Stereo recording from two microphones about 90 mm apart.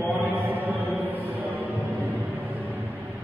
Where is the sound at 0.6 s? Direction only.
20° right (ahead or behind).